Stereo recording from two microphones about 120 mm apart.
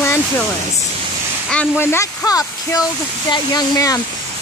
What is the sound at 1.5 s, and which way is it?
Speech, 15° left (ahead or behind).